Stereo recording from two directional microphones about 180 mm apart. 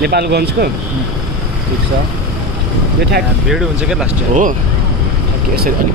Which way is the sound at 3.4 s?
Centre (ahead or behind).